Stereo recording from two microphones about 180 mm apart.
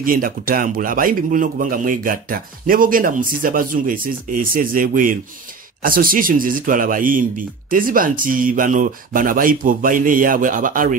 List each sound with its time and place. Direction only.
0.0 s a man's voice: 50° right (ahead or behind)